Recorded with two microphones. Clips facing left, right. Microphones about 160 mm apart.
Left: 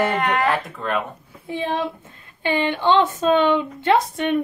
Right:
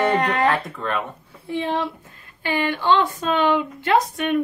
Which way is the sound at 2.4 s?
20° left (ahead or behind).